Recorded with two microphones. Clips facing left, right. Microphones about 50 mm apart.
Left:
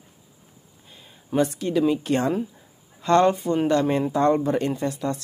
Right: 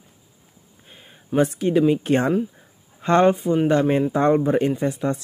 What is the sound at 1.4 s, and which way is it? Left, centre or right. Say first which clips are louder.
Speech: right 3 dB; right.